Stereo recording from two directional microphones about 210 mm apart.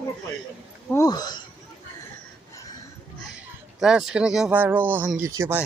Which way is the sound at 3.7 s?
5° right (ahead or behind).